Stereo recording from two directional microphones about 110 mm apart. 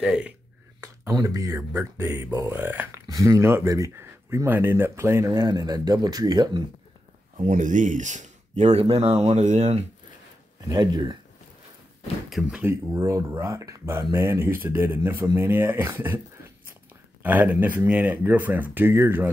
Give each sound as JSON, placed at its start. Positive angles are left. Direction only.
{"t": 0.0, "sound": "speech", "side_deg": -10}
{"t": 0.7, "sound": "speech", "side_deg": -30}
{"t": 3.1, "sound": "speech", "side_deg": -30}
{"t": 8.0, "sound": "speech", "side_deg": -90}
{"t": 10.7, "sound": "speech", "side_deg": -40}
{"t": 12.3, "sound": "speech", "side_deg": -5}
{"t": 12.6, "sound": "speech", "side_deg": -25}
{"t": 17.2, "sound": "speech", "side_deg": -15}